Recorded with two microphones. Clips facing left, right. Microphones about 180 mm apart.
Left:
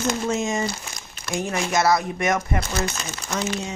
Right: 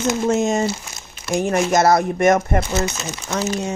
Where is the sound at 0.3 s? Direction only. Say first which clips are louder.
Right 6 dB; 50° right (ahead or behind).